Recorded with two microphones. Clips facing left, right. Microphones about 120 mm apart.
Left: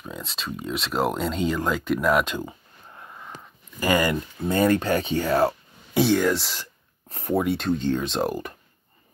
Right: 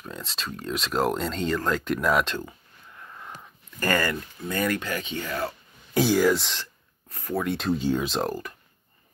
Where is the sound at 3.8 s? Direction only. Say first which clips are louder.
Left 3 dB; 15° left (ahead or behind); by 5.5 s 40° left (ahead or behind).